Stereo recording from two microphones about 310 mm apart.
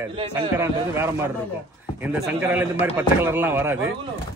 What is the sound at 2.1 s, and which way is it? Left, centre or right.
Speech, centre.